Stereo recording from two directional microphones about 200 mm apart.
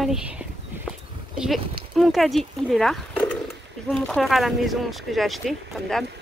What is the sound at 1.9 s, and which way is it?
Speech, centre (ahead or behind).